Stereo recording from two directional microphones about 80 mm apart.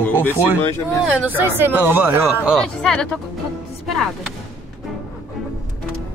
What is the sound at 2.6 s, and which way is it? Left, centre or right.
Speech, centre.